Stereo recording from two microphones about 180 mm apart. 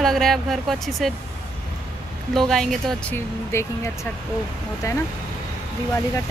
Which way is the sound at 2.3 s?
Centre (ahead or behind).